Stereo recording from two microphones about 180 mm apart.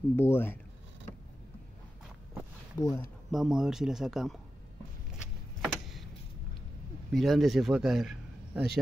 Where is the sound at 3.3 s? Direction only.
Centre (ahead or behind).